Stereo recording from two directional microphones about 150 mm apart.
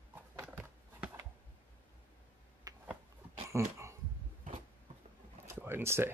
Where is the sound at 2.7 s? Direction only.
25° right (ahead or behind).